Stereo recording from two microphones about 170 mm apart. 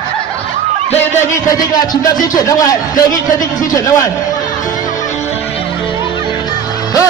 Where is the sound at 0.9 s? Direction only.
15° left (ahead or behind).